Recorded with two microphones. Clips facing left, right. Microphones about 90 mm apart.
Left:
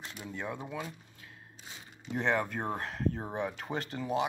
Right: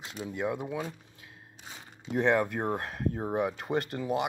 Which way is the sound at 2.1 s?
15° right (ahead or behind).